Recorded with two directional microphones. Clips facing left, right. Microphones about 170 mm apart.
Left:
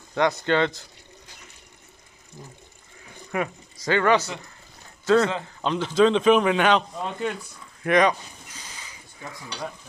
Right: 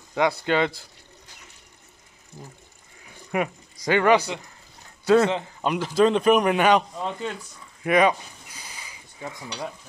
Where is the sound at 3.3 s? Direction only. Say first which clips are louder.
Right 2 dB; 15° right (ahead or behind).